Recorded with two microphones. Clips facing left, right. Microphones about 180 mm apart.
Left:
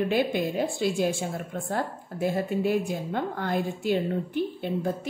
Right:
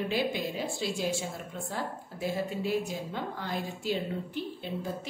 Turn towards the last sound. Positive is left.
turn(degrees=55)  # may be behind; listen again after turning